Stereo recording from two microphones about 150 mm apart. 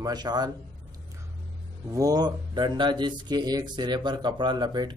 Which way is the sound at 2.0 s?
25° right (ahead or behind).